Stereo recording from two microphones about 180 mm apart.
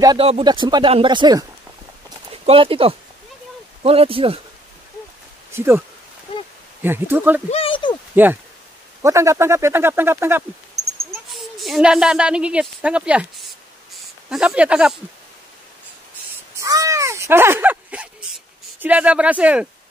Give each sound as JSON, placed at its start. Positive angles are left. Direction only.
{"t": 0.2, "sound": "speech", "side_deg": -30}
{"t": 2.4, "sound": "speech", "side_deg": -30}
{"t": 5.5, "sound": "speech", "side_deg": -15}
{"t": 7.5, "sound": "a sound", "side_deg": 30}
{"t": 9.0, "sound": "speech", "side_deg": -15}
{"t": 11.1, "sound": "speech", "side_deg": 0}
{"t": 16.5, "sound": "caw", "side_deg": -20}